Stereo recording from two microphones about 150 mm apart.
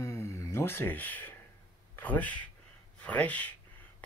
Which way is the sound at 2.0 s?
10° left (ahead or behind).